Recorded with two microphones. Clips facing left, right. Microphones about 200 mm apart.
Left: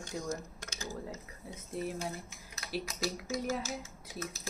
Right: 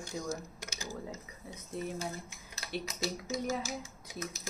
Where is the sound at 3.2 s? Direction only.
15° right (ahead or behind).